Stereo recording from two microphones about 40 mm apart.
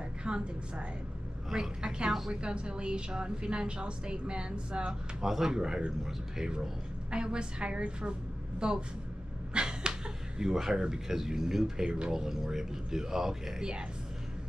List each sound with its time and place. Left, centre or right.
0.2 s a woman's voice: right
5.2 s a woman's voice: centre
9.5 s a sound: right
10.4 s speech: centre
11.8 s a woman's voice: right
12.1 s speech: centre